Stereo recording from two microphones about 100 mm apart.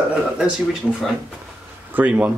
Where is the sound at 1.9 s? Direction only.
15° right (ahead or behind).